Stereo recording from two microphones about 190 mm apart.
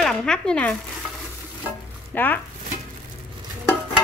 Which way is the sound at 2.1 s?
10° left (ahead or behind).